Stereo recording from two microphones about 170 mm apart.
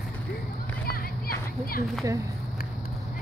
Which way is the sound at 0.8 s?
60° left (ahead or behind).